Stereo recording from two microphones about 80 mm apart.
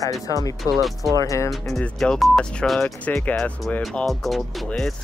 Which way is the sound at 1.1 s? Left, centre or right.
Left.